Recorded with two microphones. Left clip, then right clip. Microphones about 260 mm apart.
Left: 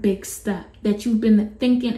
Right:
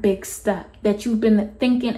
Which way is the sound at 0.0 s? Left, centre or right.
Centre.